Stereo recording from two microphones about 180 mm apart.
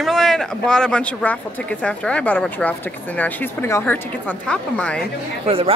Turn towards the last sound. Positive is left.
turn(degrees=-30)  # may be behind; listen again after turning